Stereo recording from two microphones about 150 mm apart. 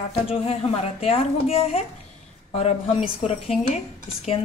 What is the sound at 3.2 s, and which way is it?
Speech, 40° left (ahead or behind).